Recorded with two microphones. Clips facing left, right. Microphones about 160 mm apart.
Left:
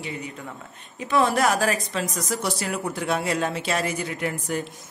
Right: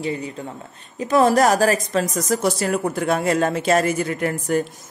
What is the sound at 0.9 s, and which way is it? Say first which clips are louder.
Speech: right 6 dB; 40° right (ahead or behind).